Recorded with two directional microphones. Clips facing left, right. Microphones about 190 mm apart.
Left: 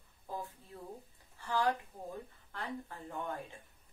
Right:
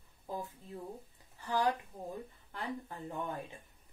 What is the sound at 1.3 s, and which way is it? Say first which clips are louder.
A woman's voice: right 1 dB; 15° right (ahead or behind).